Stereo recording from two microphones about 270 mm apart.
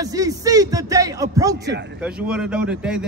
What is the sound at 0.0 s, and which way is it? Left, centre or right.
Speech, centre.